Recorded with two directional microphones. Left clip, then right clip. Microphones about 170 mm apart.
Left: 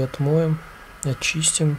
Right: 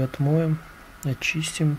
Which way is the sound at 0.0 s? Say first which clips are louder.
Left 4 dB; centre (ahead or behind).